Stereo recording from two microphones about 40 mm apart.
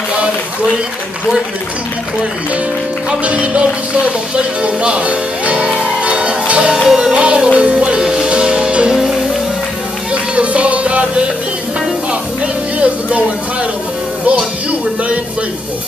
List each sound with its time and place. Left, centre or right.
3.3 s music: right
8.0 s music: centre
10.1 s music: right
12.7 s a sound: right
14.2 s music: right